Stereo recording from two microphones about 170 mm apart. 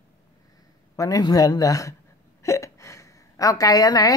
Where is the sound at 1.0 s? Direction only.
20° left (ahead or behind).